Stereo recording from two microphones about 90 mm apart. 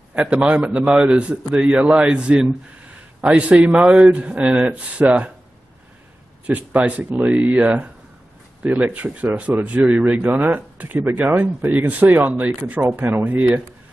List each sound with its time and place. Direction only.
0.1 s a man's voice: 15° right (ahead or behind)
6.4 s a man's voice: 15° right (ahead or behind)